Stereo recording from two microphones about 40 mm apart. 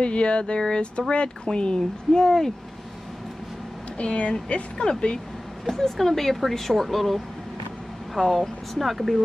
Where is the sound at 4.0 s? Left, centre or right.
Left.